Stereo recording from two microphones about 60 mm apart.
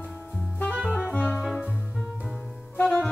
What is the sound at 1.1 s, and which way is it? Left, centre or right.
Music, left.